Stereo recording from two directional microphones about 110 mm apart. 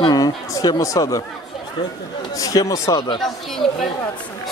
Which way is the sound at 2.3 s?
30° left (ahead or behind).